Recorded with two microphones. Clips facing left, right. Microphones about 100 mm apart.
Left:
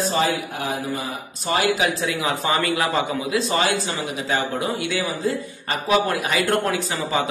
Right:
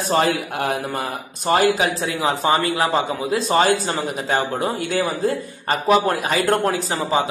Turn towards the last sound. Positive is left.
turn(degrees=-35)  # may be behind; listen again after turning